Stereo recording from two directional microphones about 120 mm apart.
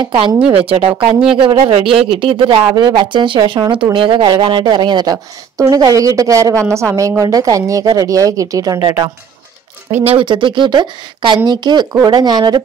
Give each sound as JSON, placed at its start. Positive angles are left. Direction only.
{"t": 0.5, "sound": "a woman's voice", "side_deg": -50}
{"t": 10.0, "sound": "a woman's voice", "side_deg": -45}